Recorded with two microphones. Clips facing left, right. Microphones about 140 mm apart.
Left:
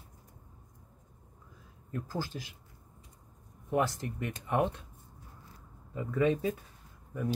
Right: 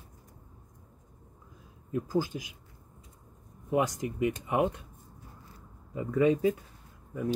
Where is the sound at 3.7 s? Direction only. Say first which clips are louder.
Right 2 dB; 15° right (ahead or behind).